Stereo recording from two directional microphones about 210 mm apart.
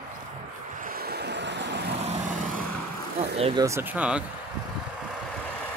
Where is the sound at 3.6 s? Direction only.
10° right (ahead or behind).